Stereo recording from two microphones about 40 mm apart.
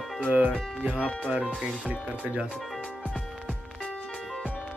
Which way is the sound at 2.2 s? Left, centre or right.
Right.